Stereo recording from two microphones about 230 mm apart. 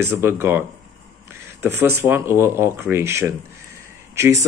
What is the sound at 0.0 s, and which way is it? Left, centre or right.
Speech, centre.